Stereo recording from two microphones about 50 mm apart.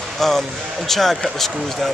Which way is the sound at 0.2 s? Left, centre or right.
Centre.